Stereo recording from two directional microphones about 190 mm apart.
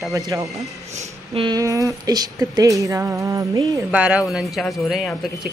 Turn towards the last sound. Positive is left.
turn(degrees=0)  # may be behind; listen again after turning